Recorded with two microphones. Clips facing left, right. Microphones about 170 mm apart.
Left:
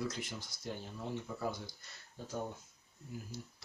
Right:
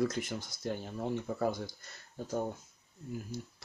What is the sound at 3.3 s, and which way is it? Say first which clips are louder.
Speech: right 6 dB; 50° right (ahead or behind).